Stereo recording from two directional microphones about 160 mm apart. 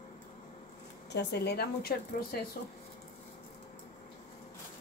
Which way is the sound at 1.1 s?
90° left.